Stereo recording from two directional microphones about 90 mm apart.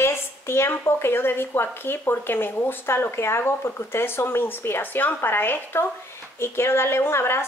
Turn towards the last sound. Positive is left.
turn(degrees=30)  # may be behind; listen again after turning